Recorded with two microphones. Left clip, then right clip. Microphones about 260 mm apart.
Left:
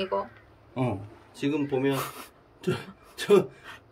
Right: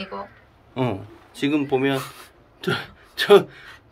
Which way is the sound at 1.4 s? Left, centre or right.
Centre.